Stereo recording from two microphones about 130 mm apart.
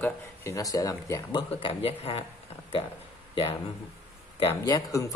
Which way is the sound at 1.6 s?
45° left (ahead or behind).